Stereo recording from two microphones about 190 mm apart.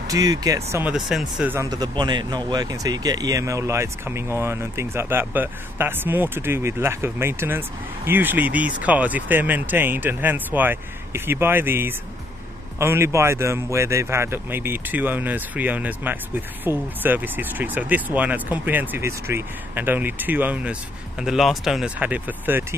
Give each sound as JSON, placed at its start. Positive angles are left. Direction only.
{"t": 0.1, "sound": "speech", "side_deg": -20}
{"t": 0.9, "sound": "speech", "side_deg": 0}